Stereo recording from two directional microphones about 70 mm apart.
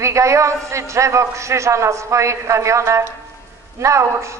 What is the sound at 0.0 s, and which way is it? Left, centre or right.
A man's voice, right.